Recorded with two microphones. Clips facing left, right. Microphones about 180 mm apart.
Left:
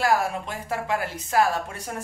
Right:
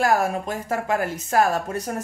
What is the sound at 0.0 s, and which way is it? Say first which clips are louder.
Speech: right 2 dB; 45° right (ahead or behind).